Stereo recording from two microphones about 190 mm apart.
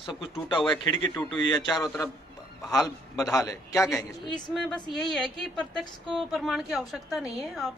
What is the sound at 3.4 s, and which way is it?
Speech, 15° left (ahead or behind).